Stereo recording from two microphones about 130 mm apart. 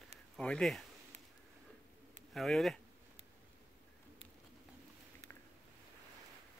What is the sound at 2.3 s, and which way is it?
Speech, centre (ahead or behind).